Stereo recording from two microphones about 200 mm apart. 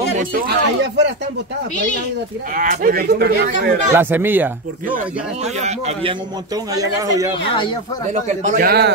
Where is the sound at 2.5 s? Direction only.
45° right (ahead or behind).